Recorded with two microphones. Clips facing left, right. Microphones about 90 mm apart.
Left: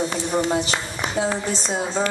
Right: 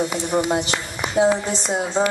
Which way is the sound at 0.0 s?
20° right (ahead or behind).